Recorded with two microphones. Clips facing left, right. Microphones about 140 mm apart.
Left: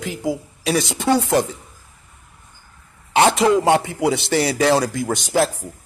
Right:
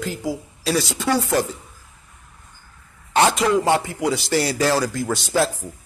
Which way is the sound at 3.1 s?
25° left (ahead or behind).